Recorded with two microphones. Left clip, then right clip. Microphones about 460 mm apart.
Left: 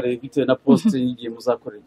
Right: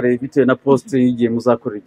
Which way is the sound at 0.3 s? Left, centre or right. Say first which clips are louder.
Right 3 dB; right.